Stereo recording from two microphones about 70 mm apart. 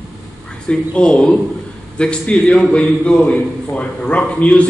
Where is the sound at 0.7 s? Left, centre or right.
Centre.